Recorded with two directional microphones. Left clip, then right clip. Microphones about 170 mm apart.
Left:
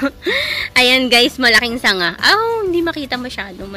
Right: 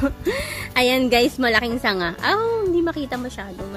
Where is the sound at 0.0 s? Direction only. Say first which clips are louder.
Left 6 dB; centre (ahead or behind).